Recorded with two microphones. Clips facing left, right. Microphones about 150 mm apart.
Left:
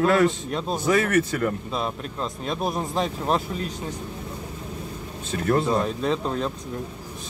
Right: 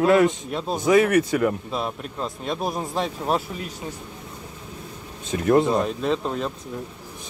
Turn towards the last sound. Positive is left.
turn(degrees=0)  # may be behind; listen again after turning